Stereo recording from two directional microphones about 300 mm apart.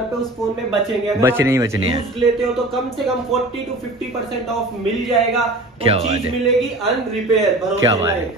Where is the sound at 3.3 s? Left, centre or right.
Centre.